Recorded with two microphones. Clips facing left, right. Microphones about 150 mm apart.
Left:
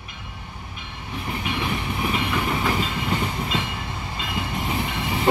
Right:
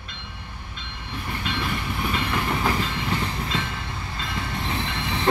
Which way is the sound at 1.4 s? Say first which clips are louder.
Left 1 dB; 5° left (ahead or behind).